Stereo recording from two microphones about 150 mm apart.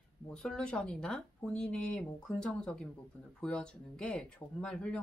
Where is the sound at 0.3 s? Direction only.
5° left (ahead or behind).